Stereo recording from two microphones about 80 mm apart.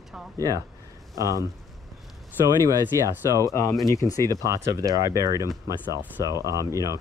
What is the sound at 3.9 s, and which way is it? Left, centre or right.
Speech, left.